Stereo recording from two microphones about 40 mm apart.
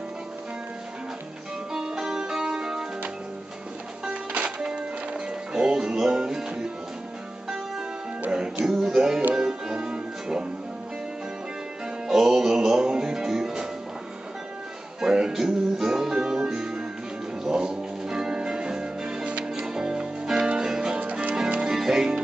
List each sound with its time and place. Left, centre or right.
1.7 s music: centre
4.1 s music: right
4.6 s music: centre
8.6 s music: centre
12.1 s music: centre
15.0 s music: centre
17.5 s church bell: centre
19.6 s music: centre
21.0 s music: right
21.7 s music: centre